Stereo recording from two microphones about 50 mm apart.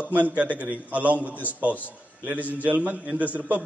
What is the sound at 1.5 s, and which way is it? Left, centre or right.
A man's voice, right.